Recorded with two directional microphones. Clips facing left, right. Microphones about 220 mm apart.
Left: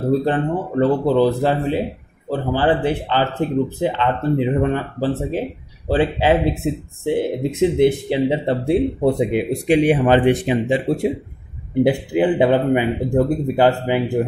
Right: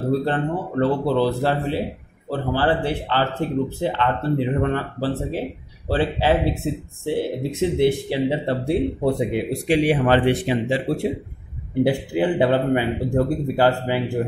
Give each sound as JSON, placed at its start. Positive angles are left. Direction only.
{"t": 0.2, "sound": "speech", "side_deg": 15}